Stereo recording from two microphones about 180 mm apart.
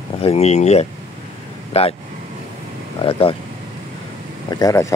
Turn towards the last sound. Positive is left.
turn(degrees=20)  # may be behind; listen again after turning